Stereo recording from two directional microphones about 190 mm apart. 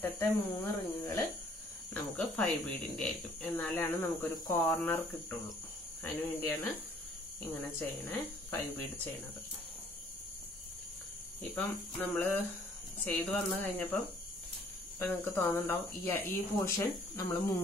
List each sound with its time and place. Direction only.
0.0 s speech: 10° left (ahead or behind)
7.8 s speech: 10° left (ahead or behind)
11.5 s speech: 10° left (ahead or behind)